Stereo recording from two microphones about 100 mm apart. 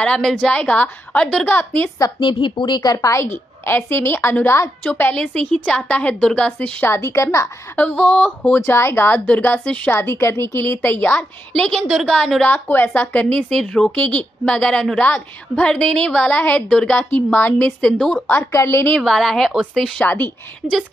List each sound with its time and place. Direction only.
0.0 s speech: 10° left (ahead or behind)
2.0 s a woman's voice: 40° left (ahead or behind)
2.2 s speech: 55° left (ahead or behind); by 6.9 s 10° left (ahead or behind)
6.9 s speech: 25° left (ahead or behind)
7.7 s speech: 10° left (ahead or behind)
8.5 s speech: 25° left (ahead or behind); by 11.8 s 10° left (ahead or behind)
11.9 s speech: 5° right (ahead or behind)
12.2 s speech: 10° left (ahead or behind)
12.5 s speech: 20° left (ahead or behind)
17.9 s speech: centre (ahead or behind)
18.2 s speech: 25° left (ahead or behind)
18.9 s speech: centre (ahead or behind)
20.0 s speech: 15° left (ahead or behind)